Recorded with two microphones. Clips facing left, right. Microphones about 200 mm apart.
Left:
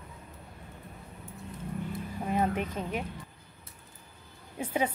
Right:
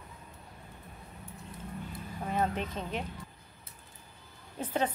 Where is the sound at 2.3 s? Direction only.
10° left (ahead or behind).